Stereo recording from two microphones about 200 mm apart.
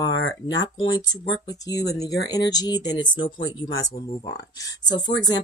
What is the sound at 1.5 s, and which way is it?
Speech, 20° left (ahead or behind).